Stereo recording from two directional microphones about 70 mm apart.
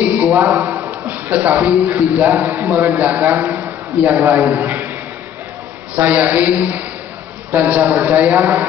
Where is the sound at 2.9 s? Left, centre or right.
Right.